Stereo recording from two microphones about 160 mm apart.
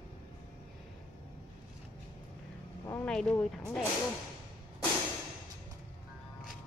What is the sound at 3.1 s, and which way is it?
Speech, 5° left (ahead or behind).